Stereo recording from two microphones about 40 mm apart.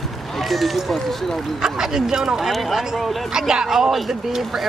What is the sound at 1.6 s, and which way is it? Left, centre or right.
Speech, centre.